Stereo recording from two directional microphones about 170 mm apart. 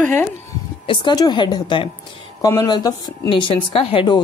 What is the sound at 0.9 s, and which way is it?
A woman's voice, 25° left (ahead or behind).